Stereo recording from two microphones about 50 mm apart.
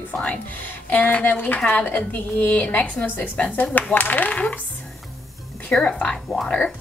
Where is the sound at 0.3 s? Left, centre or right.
Left.